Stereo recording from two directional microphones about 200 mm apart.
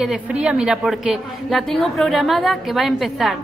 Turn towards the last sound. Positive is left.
turn(degrees=0)  # may be behind; listen again after turning